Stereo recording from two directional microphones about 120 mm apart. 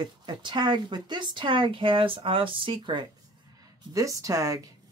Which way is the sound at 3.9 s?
25° right (ahead or behind).